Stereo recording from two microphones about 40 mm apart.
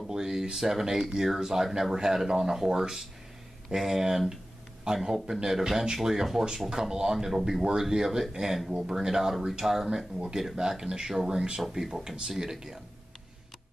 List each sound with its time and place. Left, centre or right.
0.0 s speech: centre